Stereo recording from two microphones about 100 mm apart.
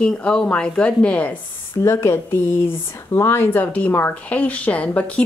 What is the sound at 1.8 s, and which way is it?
A woman's voice, 25° left (ahead or behind).